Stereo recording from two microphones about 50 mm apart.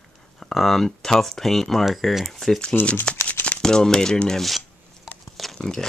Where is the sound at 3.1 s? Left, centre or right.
Centre.